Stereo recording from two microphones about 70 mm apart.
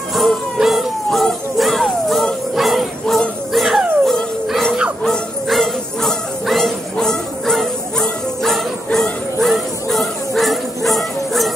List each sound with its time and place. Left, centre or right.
0.1 s a sound: centre
2.5 s jingle bell: centre
3.2 s music: centre
5.0 s bow-wow: centre